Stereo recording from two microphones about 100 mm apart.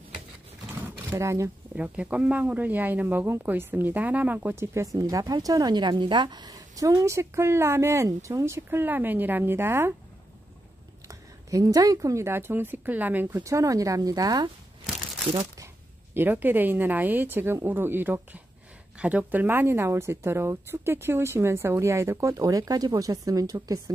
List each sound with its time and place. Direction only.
1.1 s speech: 30° right (ahead or behind)
1.8 s speech: 15° right (ahead or behind)
11.1 s speech: 35° right (ahead or behind)
16.2 s speech: 20° right (ahead or behind); by 23.8 s 35° right (ahead or behind)